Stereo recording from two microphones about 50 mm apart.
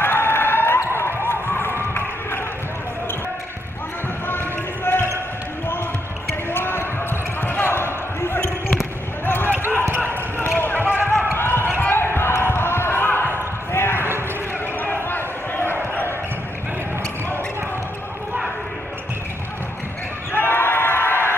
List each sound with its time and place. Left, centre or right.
0.0 s a sound: left
4.8 s basketball bounce: left
6.5 s basketball bounce: left
9.2 s basketball bounce: left
11.3 s basketball bounce: left
13.7 s basketball bounce: left
20.3 s crowd: left